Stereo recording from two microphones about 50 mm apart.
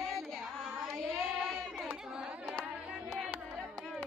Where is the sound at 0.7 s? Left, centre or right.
Centre.